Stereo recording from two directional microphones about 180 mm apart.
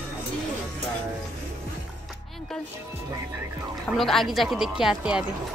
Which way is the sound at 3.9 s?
Centre (ahead or behind).